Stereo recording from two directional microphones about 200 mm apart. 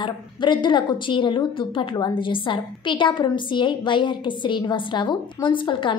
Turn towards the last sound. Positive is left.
turn(degrees=25)  # may be behind; listen again after turning